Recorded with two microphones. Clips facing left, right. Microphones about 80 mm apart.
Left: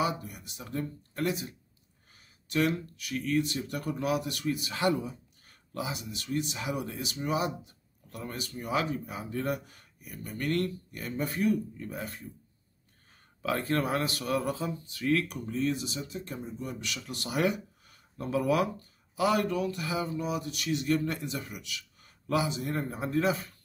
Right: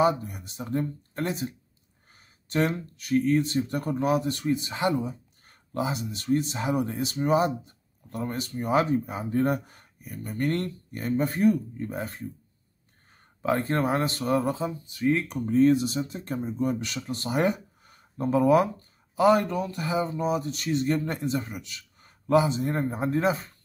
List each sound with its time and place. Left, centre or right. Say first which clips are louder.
0.0 s speech: right 8 dB; right
5.5 s speech: right 6 dB; right
13.4 s speech: right 4 dB; right
15.3 s speech: right 10 dB; right